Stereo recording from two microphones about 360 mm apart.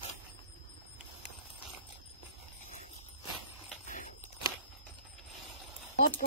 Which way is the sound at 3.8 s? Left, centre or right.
Left.